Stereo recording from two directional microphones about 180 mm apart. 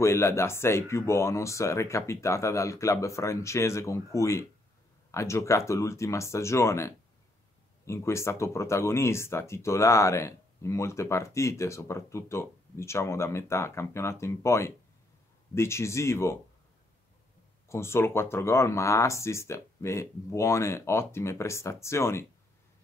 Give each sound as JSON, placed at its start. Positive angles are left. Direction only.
{"t": 0.0, "sound": "speech", "side_deg": 15}
{"t": 17.6, "sound": "speech", "side_deg": 15}